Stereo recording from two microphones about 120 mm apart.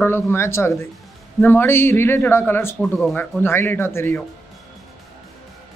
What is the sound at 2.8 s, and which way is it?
Speech, 10° left (ahead or behind).